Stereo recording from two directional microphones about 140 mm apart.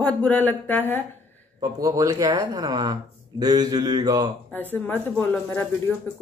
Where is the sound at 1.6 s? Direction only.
25° right (ahead or behind).